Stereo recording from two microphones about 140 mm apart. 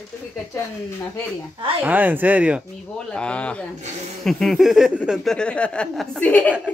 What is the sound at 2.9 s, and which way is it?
A woman's voice, 5° left (ahead or behind).